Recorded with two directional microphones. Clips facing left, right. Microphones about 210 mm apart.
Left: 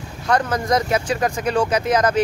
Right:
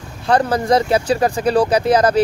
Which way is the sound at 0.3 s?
30° right (ahead or behind).